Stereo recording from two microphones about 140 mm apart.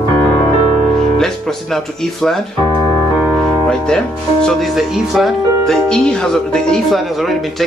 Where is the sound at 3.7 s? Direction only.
5° left (ahead or behind).